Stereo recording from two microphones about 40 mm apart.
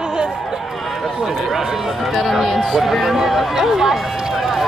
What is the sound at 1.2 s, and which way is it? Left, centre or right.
Run, centre.